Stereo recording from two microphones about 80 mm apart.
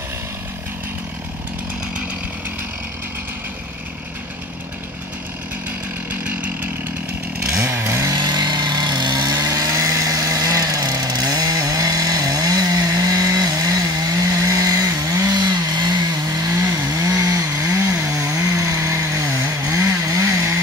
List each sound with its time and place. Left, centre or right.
6.2 s chainsaw: right
7.6 s chainsaw: right
8.1 s vehicle: right
9.5 s chainsaw: right
15.4 s chainsaw: right
16.6 s chainsaw: right